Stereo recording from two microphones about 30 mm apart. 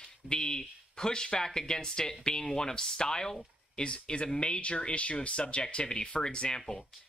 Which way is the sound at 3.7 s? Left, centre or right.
Left.